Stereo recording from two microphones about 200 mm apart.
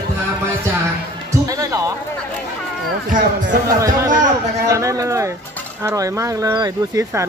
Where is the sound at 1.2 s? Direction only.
15° right (ahead or behind).